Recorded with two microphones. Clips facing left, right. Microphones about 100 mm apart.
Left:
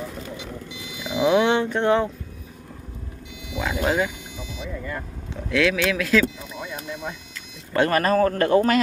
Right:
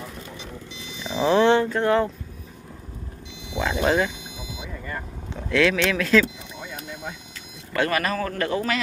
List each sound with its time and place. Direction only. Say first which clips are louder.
1.0 s speech: even; 5° left (ahead or behind)
3.8 s speech: right 1 dB; 5° left (ahead or behind)
5.3 s speech: right 1 dB; 5° left (ahead or behind)
7.7 s a man's voice: left 4 dB; 35° left (ahead or behind)